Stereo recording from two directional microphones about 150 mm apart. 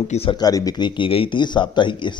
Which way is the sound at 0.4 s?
25° left (ahead or behind).